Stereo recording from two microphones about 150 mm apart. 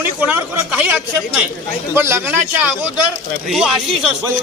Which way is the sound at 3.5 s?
Centre (ahead or behind).